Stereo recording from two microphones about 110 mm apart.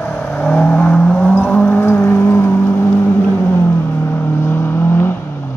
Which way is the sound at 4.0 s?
20° left (ahead or behind).